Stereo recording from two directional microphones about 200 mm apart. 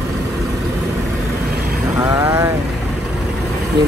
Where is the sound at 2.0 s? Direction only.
10° right (ahead or behind).